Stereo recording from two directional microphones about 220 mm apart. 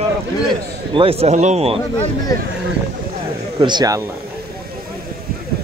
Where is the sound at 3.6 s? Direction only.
20° right (ahead or behind).